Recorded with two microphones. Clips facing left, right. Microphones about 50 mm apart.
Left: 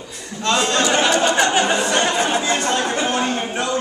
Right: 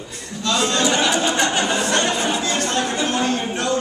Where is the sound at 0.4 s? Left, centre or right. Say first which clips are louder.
Left 2 dB; left.